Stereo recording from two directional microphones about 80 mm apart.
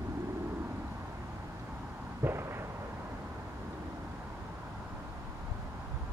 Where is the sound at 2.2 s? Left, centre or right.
Right.